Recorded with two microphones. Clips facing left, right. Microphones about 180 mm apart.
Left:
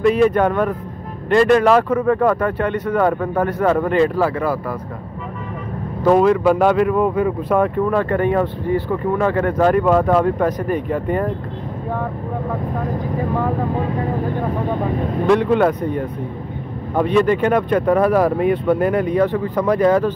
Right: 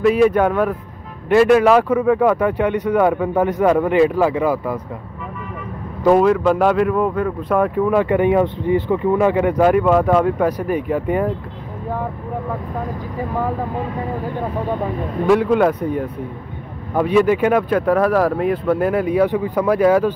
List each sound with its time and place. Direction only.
0.0 s speech: 5° right (ahead or behind)
6.0 s speech: centre (ahead or behind)
15.2 s speech: centre (ahead or behind)